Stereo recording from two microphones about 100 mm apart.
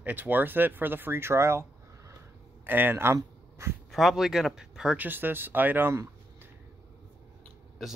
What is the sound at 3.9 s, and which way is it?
Speech, centre (ahead or behind).